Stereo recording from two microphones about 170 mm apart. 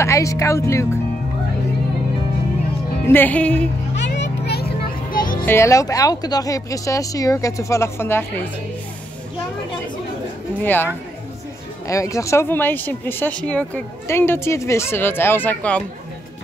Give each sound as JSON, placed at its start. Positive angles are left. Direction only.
{"t": 0.0, "sound": "speech", "side_deg": 20}
{"t": 3.1, "sound": "speech", "side_deg": 10}
{"t": 3.9, "sound": "a sound", "side_deg": 90}
{"t": 5.1, "sound": "music", "side_deg": 55}
{"t": 5.4, "sound": "speech", "side_deg": 15}
{"t": 10.6, "sound": "speech", "side_deg": 10}
{"t": 11.9, "sound": "speech", "side_deg": 20}